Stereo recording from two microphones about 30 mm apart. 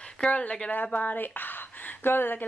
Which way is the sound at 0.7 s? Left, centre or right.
Left.